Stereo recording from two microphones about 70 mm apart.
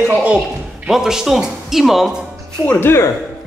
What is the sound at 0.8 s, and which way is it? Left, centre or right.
Speech, centre.